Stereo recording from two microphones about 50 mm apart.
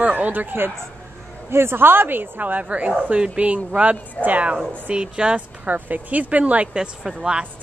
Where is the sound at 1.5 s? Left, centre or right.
Right.